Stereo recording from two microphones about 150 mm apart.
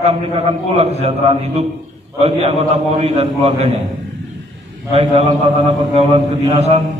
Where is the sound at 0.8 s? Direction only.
45° right (ahead or behind).